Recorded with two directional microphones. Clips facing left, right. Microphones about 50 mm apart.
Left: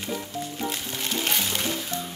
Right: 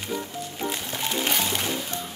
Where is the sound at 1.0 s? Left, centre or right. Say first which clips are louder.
Right 2 dB; centre.